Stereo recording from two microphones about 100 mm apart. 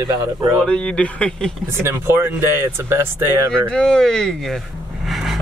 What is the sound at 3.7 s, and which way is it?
Speech, 10° left (ahead or behind).